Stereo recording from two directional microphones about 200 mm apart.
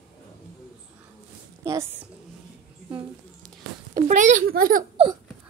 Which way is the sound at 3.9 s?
40° right (ahead or behind).